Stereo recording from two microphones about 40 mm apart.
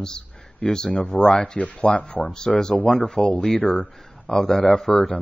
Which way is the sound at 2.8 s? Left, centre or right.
Centre.